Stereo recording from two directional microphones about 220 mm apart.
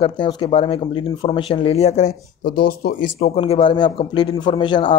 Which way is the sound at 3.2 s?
25° left (ahead or behind).